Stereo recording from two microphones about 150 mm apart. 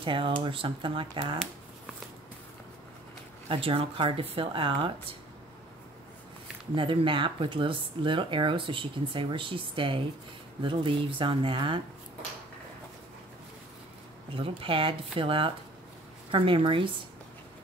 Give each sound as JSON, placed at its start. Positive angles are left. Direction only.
{"t": 0.0, "sound": "speech", "side_deg": -35}
{"t": 3.4, "sound": "speech", "side_deg": -35}
{"t": 6.7, "sound": "speech", "side_deg": -35}
{"t": 14.3, "sound": "speech", "side_deg": -35}